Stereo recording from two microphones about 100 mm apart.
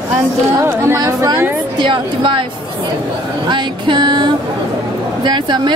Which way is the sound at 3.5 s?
50° right (ahead or behind).